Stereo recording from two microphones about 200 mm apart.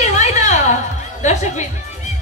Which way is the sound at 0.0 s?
35° left (ahead or behind).